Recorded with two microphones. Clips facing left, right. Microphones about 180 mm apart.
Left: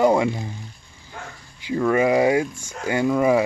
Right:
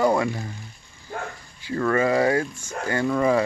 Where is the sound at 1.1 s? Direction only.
50° right (ahead or behind).